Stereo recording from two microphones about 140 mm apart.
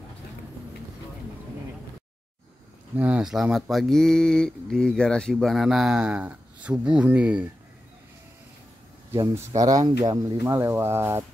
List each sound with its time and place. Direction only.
3.0 s speech: 5° right (ahead or behind)
9.1 s speech: 20° right (ahead or behind)